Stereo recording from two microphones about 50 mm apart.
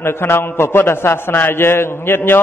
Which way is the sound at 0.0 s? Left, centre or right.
Left.